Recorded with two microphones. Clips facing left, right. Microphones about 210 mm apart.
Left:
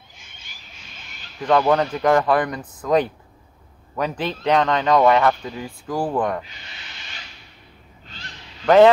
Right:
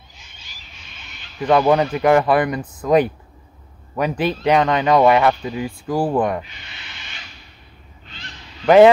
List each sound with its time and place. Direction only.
0.2 s squawk: 55° left (ahead or behind)
1.4 s speech: 10° right (ahead or behind)
8.6 s speech: 10° right (ahead or behind)